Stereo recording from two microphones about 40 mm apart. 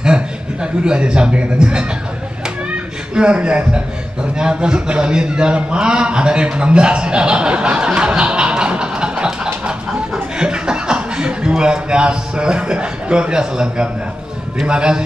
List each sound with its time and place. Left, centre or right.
0.0 s speech: right
3.2 s a man's voice: right
9.7 s chuckle: right
14.7 s a man's voice: right